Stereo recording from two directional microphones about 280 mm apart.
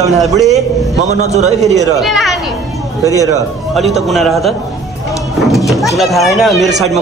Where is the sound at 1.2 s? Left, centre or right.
Right.